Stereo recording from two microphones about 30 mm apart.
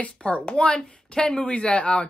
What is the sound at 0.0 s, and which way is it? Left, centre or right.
Speech, left.